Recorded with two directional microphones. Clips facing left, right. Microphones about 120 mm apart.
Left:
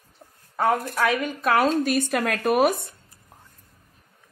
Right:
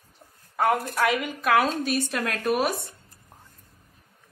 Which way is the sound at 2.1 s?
55° left (ahead or behind).